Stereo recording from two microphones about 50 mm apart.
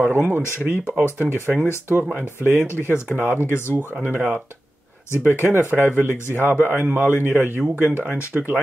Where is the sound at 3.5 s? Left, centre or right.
Left.